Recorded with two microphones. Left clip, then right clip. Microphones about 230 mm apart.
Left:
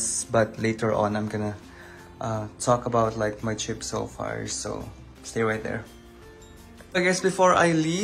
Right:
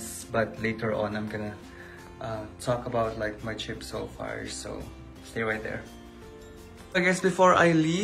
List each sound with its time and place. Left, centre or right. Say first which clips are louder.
0.0 s speech: left 5 dB; left
6.9 s speech: left 2 dB; centre